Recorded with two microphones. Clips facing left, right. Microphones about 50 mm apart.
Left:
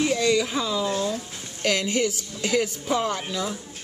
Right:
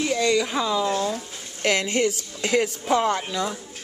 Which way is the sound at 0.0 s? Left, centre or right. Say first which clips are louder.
Even; centre.